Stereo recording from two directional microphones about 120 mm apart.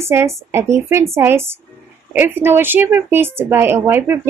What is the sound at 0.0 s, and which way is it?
A woman's voice, 20° right (ahead or behind).